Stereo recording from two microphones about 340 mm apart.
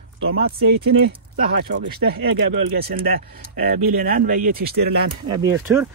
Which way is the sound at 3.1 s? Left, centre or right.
Right.